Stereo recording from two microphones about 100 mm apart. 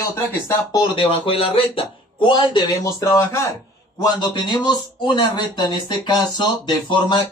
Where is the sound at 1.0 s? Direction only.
70° left (ahead or behind).